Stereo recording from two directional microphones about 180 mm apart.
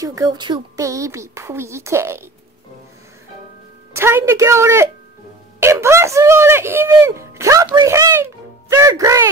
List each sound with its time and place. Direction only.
0.0 s speech: 20° right (ahead or behind)
3.9 s speech: 15° right (ahead or behind)